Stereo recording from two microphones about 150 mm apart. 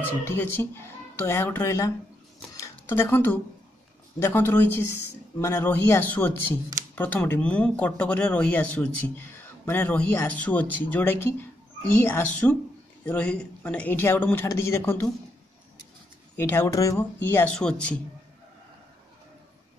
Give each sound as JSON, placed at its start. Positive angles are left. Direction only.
{"t": 0.2, "sound": "speech", "side_deg": 15}
{"t": 16.3, "sound": "speech", "side_deg": 15}